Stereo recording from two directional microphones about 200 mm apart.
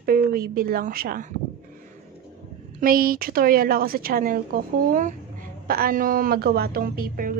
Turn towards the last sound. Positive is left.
turn(degrees=-45)  # may be behind; listen again after turning